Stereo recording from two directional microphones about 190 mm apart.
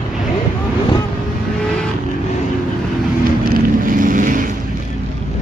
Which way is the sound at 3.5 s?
50° right (ahead or behind).